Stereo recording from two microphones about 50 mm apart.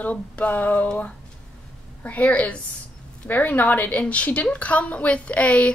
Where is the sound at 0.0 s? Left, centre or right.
Left.